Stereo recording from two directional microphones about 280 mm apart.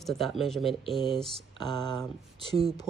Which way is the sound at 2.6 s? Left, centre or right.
Centre.